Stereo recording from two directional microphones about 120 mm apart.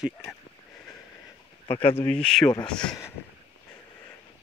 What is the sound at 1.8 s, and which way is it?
Speech, 20° left (ahead or behind).